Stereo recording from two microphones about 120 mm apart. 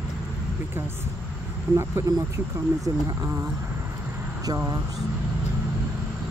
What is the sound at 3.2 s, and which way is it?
Speech, 20° right (ahead or behind).